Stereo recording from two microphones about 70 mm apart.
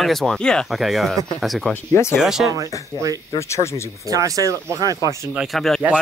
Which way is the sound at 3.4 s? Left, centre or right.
Left.